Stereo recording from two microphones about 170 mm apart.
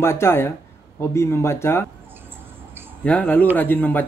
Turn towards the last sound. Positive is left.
turn(degrees=10)  # may be behind; listen again after turning